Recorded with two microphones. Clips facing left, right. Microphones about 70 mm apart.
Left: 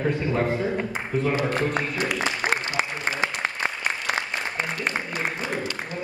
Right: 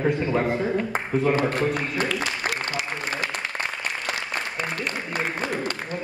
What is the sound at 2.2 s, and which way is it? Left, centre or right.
Applause, left.